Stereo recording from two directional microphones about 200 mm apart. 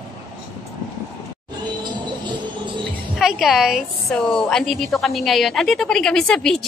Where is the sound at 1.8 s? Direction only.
25° right (ahead or behind).